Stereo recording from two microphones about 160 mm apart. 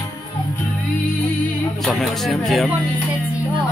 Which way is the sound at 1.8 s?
Centre (ahead or behind).